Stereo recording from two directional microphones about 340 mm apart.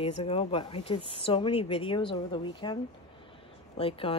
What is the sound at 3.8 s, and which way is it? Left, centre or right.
Speech, centre.